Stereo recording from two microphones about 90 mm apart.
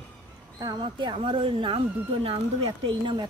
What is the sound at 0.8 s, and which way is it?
Speech, 70° right (ahead or behind).